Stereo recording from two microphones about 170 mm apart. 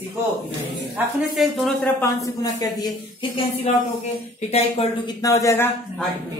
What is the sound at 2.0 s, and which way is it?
Speech, 20° left (ahead or behind).